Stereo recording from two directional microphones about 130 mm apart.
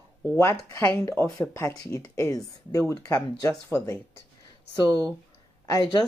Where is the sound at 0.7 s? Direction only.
20° left (ahead or behind).